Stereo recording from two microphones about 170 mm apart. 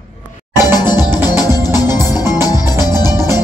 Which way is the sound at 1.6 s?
15° right (ahead or behind).